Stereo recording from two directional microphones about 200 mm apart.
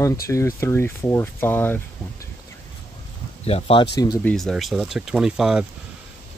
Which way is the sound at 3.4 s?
30° left (ahead or behind).